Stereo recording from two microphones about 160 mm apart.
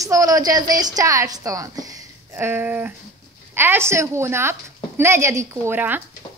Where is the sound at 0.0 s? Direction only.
20° right (ahead or behind).